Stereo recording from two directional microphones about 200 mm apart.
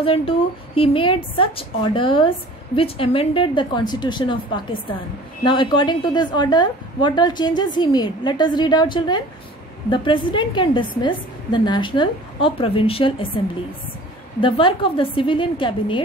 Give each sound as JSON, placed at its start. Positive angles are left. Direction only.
{"t": 0.0, "sound": "a woman's voice", "side_deg": 25}
{"t": 14.4, "sound": "a woman's voice", "side_deg": 25}